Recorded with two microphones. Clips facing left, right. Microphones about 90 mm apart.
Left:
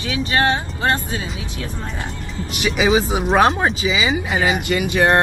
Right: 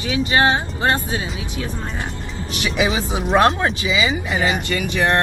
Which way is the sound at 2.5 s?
20° left (ahead or behind).